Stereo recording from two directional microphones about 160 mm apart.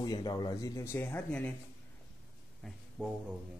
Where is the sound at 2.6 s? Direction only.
5° right (ahead or behind).